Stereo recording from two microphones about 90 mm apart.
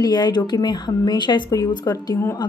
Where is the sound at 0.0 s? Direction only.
50° left (ahead or behind).